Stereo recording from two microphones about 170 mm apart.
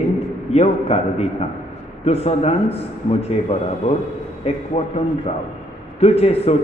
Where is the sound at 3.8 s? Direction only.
35° left (ahead or behind).